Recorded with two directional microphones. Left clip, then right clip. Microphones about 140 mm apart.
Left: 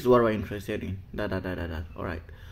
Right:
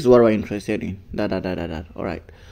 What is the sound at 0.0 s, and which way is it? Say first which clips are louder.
Speech: right 8 dB; 40° right (ahead or behind).